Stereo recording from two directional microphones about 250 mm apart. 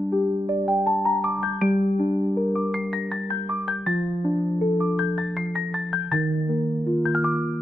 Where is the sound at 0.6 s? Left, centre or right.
Centre.